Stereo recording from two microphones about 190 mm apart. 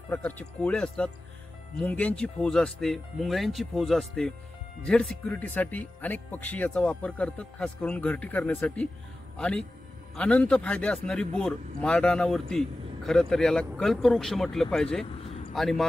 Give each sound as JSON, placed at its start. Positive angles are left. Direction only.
{"t": 0.1, "sound": "speech", "side_deg": 5}